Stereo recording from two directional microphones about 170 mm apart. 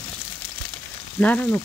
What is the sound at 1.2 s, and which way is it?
Frying, 10° left (ahead or behind).